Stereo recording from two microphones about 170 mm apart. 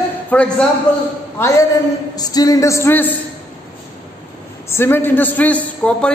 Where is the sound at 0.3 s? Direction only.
5° left (ahead or behind).